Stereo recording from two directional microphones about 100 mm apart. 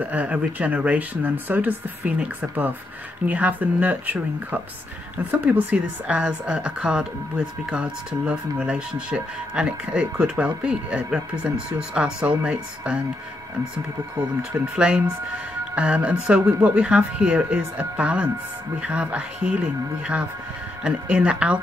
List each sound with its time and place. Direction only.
0.0 s speech: 15° right (ahead or behind)
14.6 s speech: 15° right (ahead or behind)